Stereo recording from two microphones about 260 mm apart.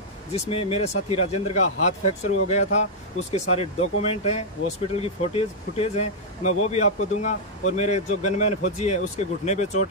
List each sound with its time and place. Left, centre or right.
0.3 s speech: left